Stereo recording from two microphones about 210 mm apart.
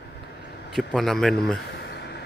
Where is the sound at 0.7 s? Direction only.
Centre (ahead or behind).